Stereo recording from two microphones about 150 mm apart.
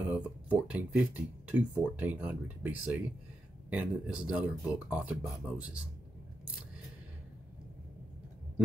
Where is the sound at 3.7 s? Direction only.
10° right (ahead or behind).